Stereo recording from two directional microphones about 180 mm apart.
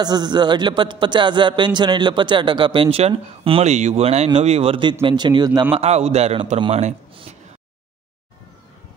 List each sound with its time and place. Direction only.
0.0 s speech: 25° right (ahead or behind)
5.8 s a man's voice: 35° right (ahead or behind)